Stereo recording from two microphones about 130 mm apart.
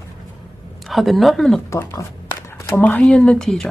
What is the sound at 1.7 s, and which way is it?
Speech, 20° left (ahead or behind).